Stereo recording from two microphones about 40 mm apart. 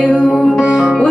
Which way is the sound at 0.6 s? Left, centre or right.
Right.